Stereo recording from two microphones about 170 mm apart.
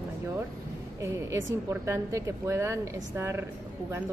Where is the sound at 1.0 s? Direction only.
15° right (ahead or behind).